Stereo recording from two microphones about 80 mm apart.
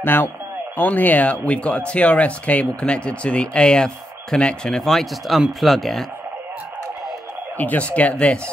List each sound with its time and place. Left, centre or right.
0.0 s speech: left; by 6.0 s centre
7.5 s speech: centre